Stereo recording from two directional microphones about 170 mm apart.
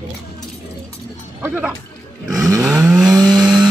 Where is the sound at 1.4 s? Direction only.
15° right (ahead or behind).